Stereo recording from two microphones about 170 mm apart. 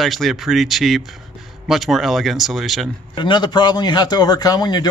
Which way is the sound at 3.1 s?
25° left (ahead or behind).